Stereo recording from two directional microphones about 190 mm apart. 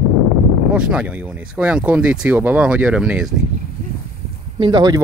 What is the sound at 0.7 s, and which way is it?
Speech, 5° right (ahead or behind).